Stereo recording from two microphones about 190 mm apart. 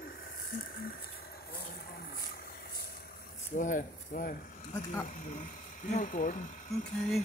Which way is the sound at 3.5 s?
45° left (ahead or behind).